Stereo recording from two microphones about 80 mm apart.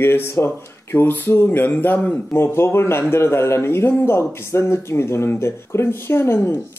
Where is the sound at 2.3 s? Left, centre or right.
Left.